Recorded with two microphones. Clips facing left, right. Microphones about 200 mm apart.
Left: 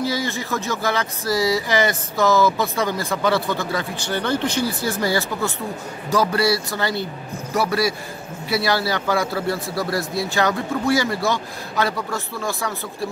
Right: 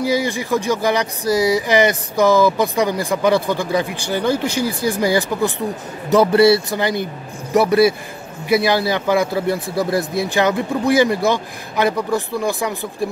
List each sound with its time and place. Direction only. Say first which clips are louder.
0.0 s speech: right 5 dB; 15° right (ahead or behind)